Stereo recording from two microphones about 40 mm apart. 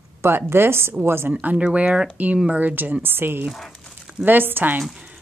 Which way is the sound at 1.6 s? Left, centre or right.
Right.